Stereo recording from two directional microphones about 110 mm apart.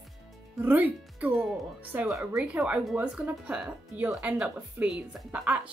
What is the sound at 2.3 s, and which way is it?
Speech, 5° right (ahead or behind).